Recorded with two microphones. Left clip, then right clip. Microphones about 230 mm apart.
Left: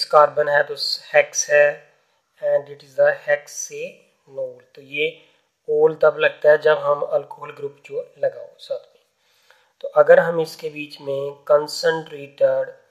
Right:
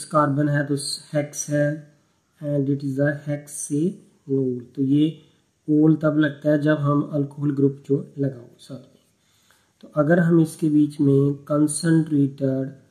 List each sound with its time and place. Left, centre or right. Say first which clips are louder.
0.1 s speech: left 6 dB; left
9.8 s speech: left 8 dB; left